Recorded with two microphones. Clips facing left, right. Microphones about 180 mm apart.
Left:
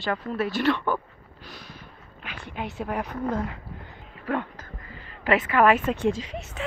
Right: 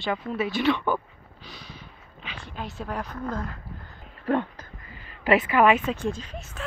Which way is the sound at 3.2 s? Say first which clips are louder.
Left 4 dB; 15° left (ahead or behind).